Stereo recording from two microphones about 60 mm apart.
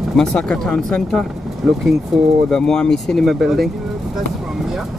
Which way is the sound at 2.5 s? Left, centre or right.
Centre.